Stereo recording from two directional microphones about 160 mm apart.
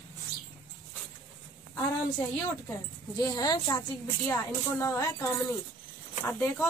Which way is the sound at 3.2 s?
25° left (ahead or behind).